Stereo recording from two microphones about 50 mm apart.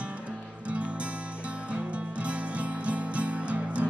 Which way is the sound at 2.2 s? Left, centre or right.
Right.